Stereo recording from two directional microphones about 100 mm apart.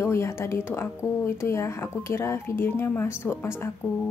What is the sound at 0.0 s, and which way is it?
Speech, 30° left (ahead or behind).